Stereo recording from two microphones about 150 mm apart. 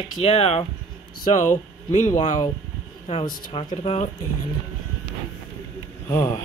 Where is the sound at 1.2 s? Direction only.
55° left (ahead or behind).